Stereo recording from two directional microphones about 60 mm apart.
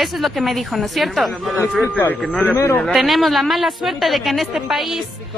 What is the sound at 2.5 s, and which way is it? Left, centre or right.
Speech, left.